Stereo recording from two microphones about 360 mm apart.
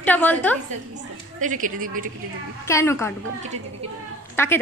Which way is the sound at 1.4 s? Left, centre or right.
Right.